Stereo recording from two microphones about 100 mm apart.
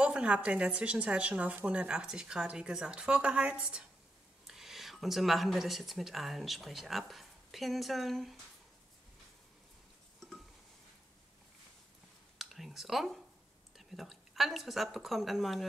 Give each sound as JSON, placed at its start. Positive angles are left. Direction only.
{"t": 0.0, "sound": "speech", "side_deg": -10}
{"t": 12.4, "sound": "a woman's voice", "side_deg": 0}